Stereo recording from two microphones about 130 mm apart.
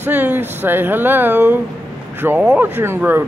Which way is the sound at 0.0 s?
15° right (ahead or behind).